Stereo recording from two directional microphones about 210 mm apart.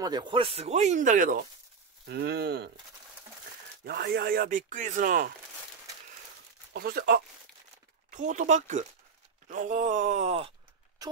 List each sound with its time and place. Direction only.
0.0 s speech: 20° right (ahead or behind); by 1.4 s 40° right (ahead or behind)
2.0 s speech: 55° right (ahead or behind)
3.8 s speech: 50° right (ahead or behind)
6.7 s speech: 45° right (ahead or behind); by 10.5 s 30° right (ahead or behind)